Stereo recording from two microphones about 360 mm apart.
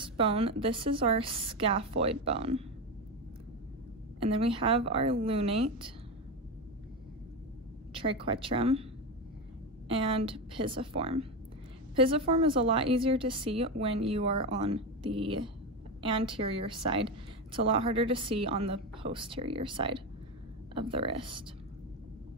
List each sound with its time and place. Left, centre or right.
0.0 s a woman's voice: centre
4.2 s a woman's voice: centre
7.9 s a woman's voice: centre
9.8 s a woman's voice: centre